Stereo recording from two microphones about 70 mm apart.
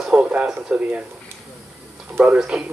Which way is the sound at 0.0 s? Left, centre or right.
Centre.